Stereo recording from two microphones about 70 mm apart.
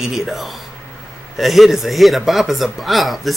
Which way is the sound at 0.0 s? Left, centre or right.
Centre.